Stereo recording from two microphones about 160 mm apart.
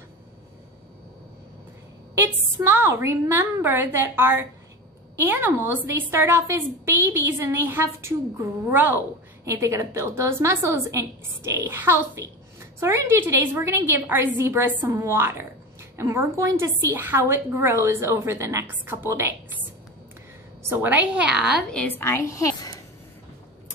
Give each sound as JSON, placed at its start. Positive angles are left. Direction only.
{"t": 2.1, "sound": "a woman's voice", "side_deg": -15}
{"t": 20.6, "sound": "a woman's voice", "side_deg": -10}